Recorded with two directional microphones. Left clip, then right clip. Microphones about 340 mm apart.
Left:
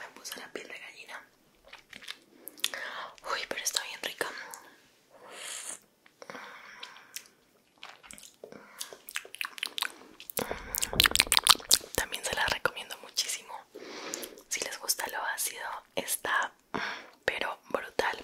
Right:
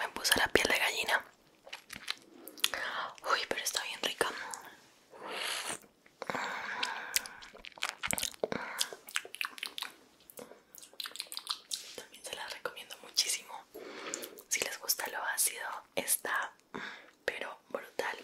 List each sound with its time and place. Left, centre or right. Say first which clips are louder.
0.0 s whispering: right 13 dB; right
2.1 s biting: right 4 dB; centre
2.6 s whispering: right 1 dB; centre
5.2 s wheeze: right 6 dB; right
7.8 s crunch: right 13 dB; right
9.1 s chewing: even; centre
9.6 s a sound: left 7 dB; centre
10.3 s whispering: left 16 dB; left
12.1 s whispering: left 12 dB; left